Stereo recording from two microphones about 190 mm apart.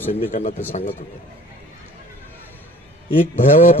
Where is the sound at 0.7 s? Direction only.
35° left (ahead or behind).